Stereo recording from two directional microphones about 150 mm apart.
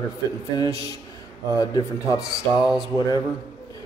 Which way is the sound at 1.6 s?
20° left (ahead or behind).